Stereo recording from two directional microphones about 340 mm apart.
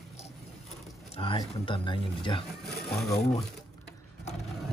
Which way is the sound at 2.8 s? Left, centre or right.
Centre.